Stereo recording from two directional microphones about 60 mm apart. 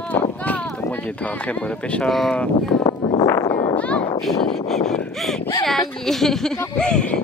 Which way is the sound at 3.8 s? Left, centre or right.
Left.